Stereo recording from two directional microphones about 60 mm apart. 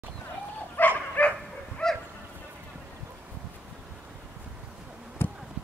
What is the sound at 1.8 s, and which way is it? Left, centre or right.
Dog, centre.